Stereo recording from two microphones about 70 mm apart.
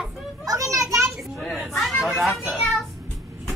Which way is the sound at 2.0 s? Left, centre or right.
Centre.